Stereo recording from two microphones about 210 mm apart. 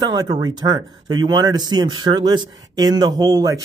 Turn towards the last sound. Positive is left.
turn(degrees=-15)  # may be behind; listen again after turning